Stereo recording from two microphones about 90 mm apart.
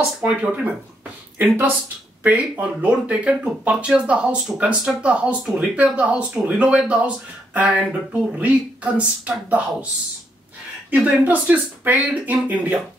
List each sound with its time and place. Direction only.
0.2 s speech: 15° right (ahead or behind)
2.2 s speech: 15° right (ahead or behind)
10.9 s speech: 20° right (ahead or behind)